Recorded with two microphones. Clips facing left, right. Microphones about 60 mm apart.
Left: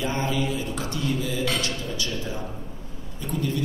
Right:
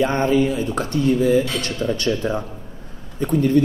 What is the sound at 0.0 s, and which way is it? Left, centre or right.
A man's voice, right.